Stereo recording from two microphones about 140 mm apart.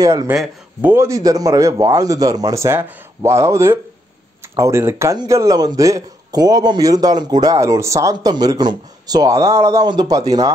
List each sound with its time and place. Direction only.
0.0 s a man's voice: 25° right (ahead or behind)
0.3 s speech: 10° right (ahead or behind)
0.9 s a man's voice: 20° right (ahead or behind)